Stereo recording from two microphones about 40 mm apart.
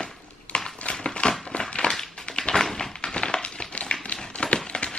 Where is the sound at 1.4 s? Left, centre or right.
Left.